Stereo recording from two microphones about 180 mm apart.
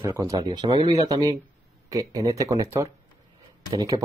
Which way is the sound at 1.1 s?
20° right (ahead or behind).